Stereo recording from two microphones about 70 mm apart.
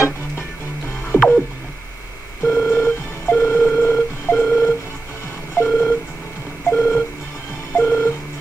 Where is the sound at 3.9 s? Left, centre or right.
Left.